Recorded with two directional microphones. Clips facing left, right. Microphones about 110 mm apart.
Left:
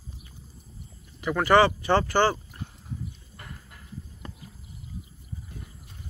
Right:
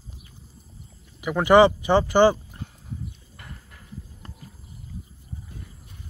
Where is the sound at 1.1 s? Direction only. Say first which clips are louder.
Right 4 dB; 15° right (ahead or behind).